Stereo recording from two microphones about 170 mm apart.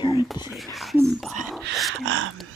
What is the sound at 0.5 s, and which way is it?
Speech, centre (ahead or behind).